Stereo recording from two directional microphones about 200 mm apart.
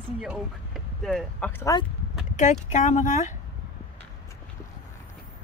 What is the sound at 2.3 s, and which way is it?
Speech, 40° left (ahead or behind).